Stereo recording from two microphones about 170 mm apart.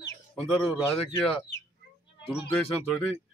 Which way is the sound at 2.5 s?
10° left (ahead or behind).